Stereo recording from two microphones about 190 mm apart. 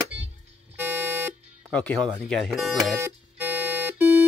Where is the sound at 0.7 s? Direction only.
10° right (ahead or behind).